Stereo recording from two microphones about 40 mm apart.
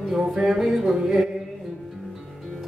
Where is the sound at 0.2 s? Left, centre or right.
Centre.